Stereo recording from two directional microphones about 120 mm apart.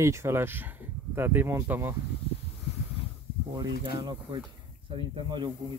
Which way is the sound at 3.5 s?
40° right (ahead or behind).